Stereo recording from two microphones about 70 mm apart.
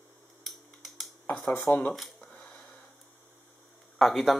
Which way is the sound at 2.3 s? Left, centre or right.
Centre.